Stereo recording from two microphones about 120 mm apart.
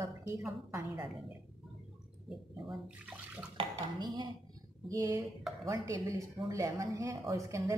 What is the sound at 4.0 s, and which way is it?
Speech, 35° right (ahead or behind).